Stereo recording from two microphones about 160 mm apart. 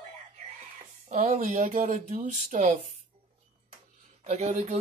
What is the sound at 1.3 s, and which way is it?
Speech, 65° right (ahead or behind).